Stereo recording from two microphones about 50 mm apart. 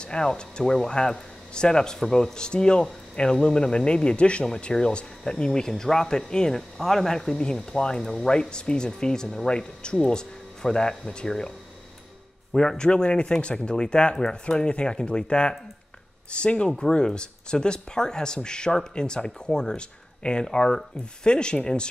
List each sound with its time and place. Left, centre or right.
0.0 s speech: centre
12.5 s speech: centre